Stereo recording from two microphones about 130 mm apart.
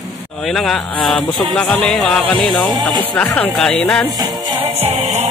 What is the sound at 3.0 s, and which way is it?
Speech, 10° left (ahead or behind).